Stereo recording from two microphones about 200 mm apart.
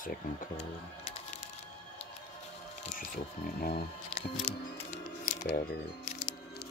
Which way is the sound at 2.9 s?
50° left (ahead or behind).